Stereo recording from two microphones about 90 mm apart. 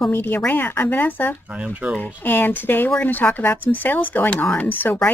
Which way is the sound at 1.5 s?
15° right (ahead or behind).